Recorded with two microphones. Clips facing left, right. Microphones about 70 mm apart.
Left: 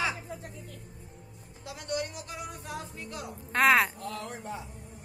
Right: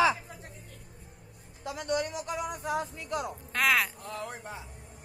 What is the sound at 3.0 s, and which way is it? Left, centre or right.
Speech, left.